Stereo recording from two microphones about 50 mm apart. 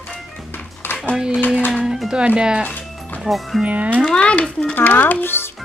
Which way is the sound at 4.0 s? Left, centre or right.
Centre.